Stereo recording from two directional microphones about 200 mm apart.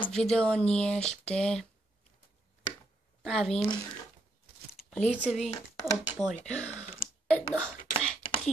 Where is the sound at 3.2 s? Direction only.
Centre (ahead or behind).